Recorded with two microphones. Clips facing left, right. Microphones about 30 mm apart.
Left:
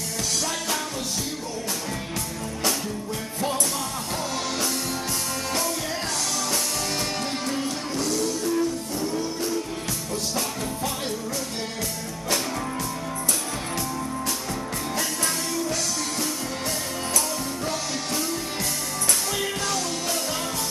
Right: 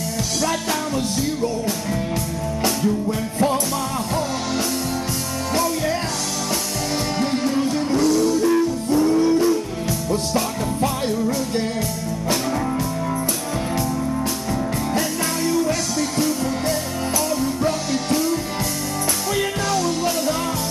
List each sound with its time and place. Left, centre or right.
3.1 s music: centre
7.2 s music: centre
8.5 s music: right
15.0 s music: centre